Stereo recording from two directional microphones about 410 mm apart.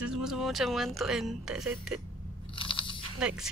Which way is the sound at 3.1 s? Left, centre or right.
Centre.